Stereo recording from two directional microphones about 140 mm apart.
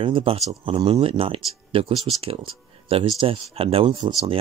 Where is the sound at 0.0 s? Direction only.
40° right (ahead or behind).